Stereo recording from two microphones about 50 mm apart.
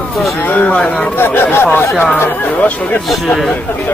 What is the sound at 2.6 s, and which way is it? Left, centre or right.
Speech, left.